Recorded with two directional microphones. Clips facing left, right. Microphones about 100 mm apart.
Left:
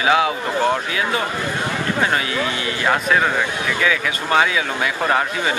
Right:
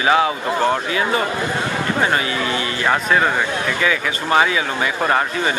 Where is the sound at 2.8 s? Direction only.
Centre (ahead or behind).